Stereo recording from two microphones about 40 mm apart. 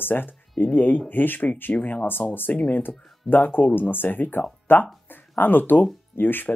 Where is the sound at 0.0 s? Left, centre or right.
Left.